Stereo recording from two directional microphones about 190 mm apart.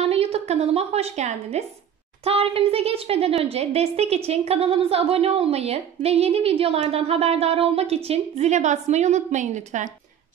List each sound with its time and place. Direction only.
0.0 s a woman's voice: 30° right (ahead or behind)